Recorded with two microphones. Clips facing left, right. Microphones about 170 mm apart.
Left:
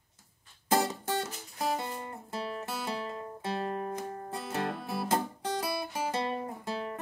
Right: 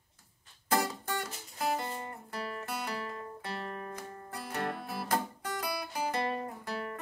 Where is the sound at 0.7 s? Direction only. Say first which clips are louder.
Left 3 dB; 25° left (ahead or behind).